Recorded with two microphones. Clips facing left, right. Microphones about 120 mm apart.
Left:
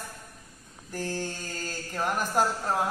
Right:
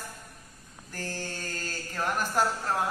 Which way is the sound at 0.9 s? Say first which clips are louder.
Left 4 dB; 15° left (ahead or behind).